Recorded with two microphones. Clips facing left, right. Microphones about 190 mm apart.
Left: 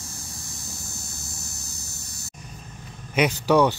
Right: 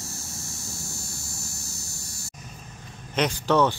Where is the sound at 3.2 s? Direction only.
10° left (ahead or behind).